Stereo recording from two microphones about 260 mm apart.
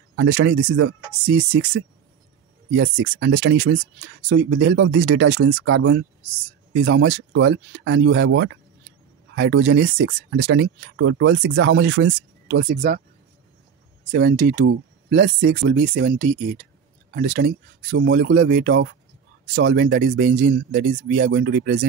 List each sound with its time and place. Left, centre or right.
0.1 s speech: right
14.1 s speech: right
15.8 s speech: right